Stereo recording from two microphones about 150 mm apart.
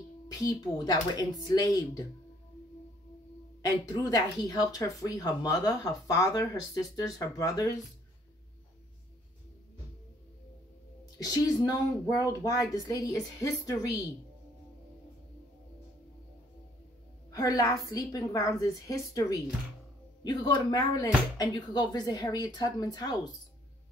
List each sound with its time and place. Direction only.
0.3 s speech: 25° left (ahead or behind)
3.6 s speech: 25° left (ahead or behind)
11.1 s speech: 25° left (ahead or behind)
17.3 s speech: 20° left (ahead or behind)